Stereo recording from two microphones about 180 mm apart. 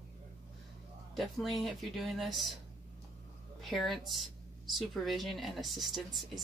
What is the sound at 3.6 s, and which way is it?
Speech, centre (ahead or behind).